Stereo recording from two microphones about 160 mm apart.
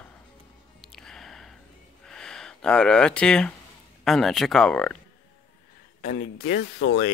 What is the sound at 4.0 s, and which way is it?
Speech, centre (ahead or behind).